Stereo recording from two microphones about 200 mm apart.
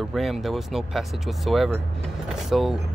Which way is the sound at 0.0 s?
Centre (ahead or behind).